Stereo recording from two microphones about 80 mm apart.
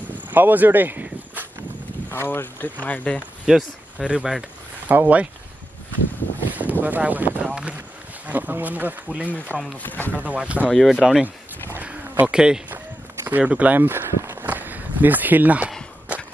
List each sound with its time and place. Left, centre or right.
0.3 s a sound: right
2.0 s speech: left
3.4 s speech: centre
4.8 s speech: centre
6.5 s speech: right
9.8 s speech: left
10.1 s speech: centre
10.7 s speech: centre
11.7 s a sound: centre
13.4 s speech: centre
14.5 s walk: right